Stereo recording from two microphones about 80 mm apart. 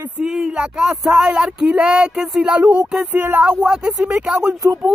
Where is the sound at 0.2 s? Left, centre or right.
Centre.